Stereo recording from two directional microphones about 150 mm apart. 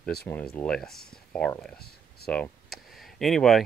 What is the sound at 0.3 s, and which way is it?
Speech, 10° left (ahead or behind).